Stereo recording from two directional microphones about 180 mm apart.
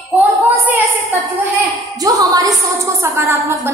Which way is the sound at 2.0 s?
20° right (ahead or behind).